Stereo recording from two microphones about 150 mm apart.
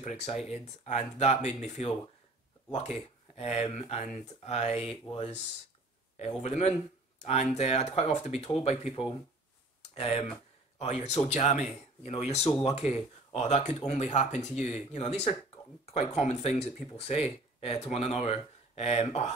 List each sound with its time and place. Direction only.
0.0 s speech: 50° left (ahead or behind)